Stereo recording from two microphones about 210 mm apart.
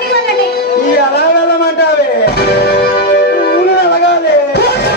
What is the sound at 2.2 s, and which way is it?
Music, 50° left (ahead or behind).